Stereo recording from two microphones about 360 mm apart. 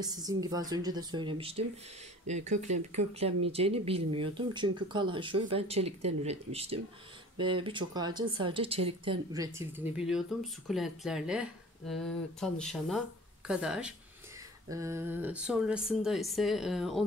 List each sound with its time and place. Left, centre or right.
0.0 s speech: centre